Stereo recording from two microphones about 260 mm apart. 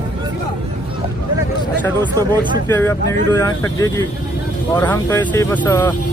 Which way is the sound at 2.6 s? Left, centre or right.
Centre.